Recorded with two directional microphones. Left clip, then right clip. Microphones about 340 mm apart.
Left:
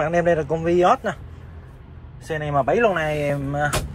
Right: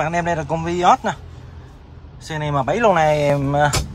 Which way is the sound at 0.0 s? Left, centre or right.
Centre.